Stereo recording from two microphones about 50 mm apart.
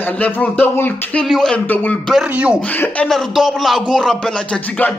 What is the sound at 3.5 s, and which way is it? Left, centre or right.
Speech, centre.